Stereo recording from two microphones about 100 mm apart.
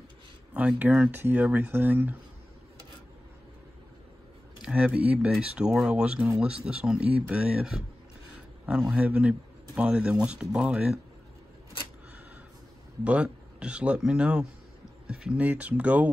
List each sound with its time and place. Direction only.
0.6 s speech: 15° right (ahead or behind)
4.6 s speech: 10° right (ahead or behind)
13.0 s speech: 10° right (ahead or behind)